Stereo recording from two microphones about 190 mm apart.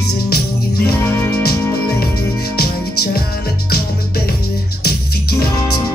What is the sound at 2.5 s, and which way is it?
Music, 55° left (ahead or behind).